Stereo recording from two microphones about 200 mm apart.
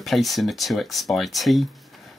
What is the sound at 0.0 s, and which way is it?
Speech, centre (ahead or behind).